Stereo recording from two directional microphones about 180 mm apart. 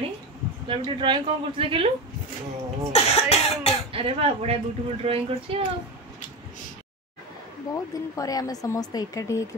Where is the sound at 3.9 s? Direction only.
30° right (ahead or behind).